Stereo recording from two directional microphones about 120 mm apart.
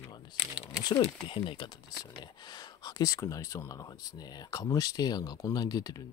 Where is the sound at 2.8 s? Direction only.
30° left (ahead or behind).